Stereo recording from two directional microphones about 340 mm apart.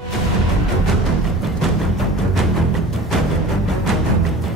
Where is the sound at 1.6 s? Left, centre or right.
Centre.